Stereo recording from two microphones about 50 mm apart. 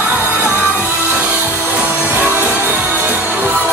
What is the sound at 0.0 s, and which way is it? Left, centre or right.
Music, right.